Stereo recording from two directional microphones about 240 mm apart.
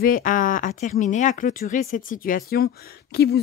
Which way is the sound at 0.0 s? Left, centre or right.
Left.